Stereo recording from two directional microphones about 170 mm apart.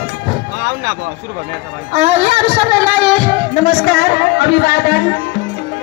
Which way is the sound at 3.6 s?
65° left (ahead or behind).